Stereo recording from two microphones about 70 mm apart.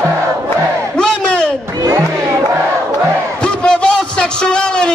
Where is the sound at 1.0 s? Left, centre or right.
Centre.